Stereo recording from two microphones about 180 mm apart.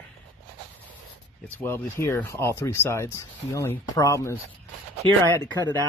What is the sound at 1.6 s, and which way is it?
Speech, 15° left (ahead or behind).